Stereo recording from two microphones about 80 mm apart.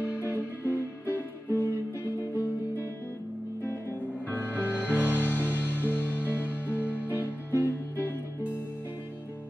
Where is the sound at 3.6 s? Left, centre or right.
Left.